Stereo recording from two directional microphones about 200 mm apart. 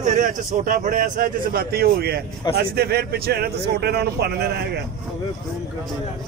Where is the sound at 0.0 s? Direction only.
40° right (ahead or behind).